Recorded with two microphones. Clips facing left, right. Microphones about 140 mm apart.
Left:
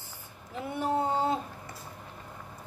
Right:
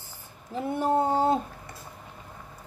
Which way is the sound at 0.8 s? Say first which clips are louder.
Right 4 dB; 40° right (ahead or behind).